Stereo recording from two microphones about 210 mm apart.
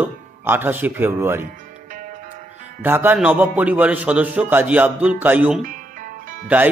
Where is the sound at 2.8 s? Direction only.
10° right (ahead or behind).